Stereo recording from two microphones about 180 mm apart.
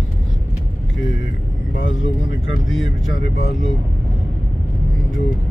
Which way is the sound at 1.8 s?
90° left.